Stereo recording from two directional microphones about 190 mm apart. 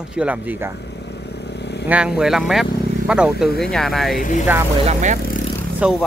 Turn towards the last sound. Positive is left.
turn(degrees=0)  # may be behind; listen again after turning